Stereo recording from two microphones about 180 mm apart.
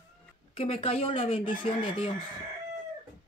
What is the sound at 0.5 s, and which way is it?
A woman's voice, 30° left (ahead or behind).